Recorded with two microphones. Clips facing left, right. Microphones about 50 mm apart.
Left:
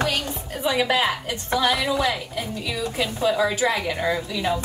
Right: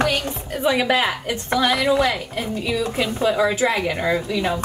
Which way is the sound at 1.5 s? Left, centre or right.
Right.